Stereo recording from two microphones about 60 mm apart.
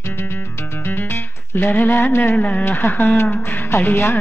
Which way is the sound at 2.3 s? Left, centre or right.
Left.